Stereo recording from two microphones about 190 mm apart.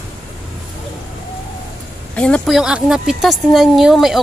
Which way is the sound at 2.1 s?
5° left (ahead or behind).